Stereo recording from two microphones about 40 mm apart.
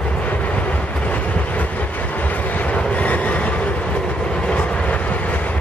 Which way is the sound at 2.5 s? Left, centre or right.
Left.